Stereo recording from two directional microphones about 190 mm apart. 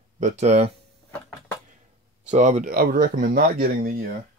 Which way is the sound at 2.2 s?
40° right (ahead or behind).